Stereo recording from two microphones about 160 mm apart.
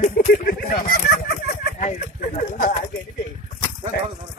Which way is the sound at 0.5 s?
65° left (ahead or behind).